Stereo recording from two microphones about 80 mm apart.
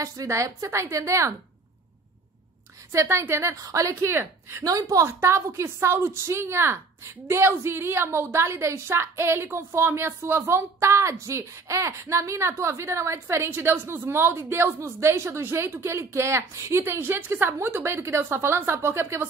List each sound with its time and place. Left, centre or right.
0.0 s a woman's voice: right
2.9 s a woman's voice: right
3.5 s a woman's voice: right
4.6 s a woman's voice: right
13.5 s a woman's voice: right